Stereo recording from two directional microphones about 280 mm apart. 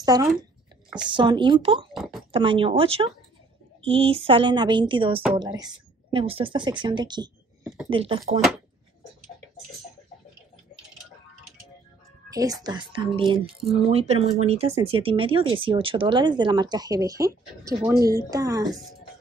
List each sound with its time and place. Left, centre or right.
0.0 s speech: centre
2.0 s speech: centre
2.3 s speech: centre
7.6 s a sound: centre
7.9 s speech: centre
12.4 s speech: centre